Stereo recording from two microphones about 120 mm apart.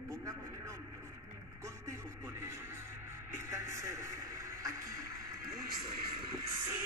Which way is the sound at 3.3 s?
25° right (ahead or behind).